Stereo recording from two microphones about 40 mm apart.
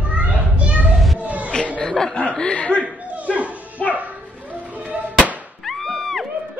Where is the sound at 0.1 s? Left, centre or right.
Right.